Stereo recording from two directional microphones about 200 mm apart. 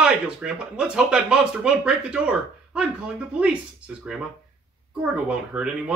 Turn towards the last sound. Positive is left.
turn(degrees=-5)  # may be behind; listen again after turning